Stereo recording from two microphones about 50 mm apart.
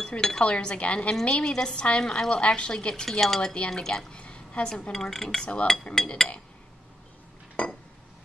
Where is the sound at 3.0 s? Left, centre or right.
Centre.